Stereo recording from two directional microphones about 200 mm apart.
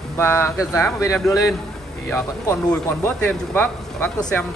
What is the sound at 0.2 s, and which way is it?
Speech, 10° left (ahead or behind).